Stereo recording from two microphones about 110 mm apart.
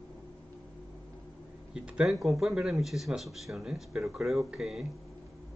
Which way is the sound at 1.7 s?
10° right (ahead or behind).